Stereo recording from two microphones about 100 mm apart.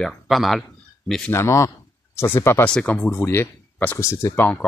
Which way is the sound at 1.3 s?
25° left (ahead or behind).